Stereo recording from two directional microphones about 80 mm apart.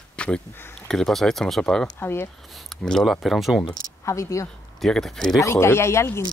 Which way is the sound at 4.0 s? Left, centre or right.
Left.